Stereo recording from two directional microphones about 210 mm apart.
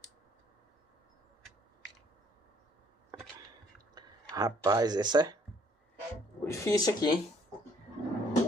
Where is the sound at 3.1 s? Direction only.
15° right (ahead or behind).